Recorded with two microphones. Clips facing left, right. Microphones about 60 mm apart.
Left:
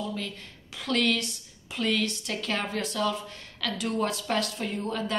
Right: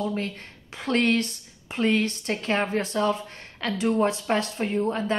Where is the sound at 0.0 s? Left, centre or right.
Right.